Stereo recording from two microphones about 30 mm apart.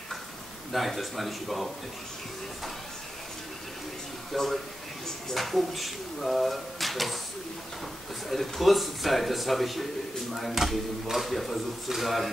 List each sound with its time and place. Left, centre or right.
0.7 s speech: centre
4.3 s speech: centre
8.3 s speech: centre